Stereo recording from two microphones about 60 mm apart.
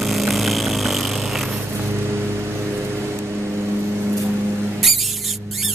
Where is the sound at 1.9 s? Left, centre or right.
Right.